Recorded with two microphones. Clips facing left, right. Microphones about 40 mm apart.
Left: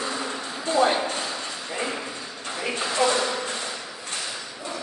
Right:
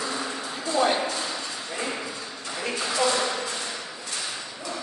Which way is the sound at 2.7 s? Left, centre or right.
Left.